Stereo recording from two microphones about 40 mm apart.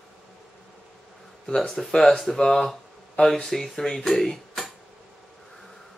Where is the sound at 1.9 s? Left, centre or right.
Centre.